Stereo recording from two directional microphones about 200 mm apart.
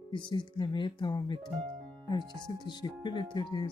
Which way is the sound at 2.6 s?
20° left (ahead or behind).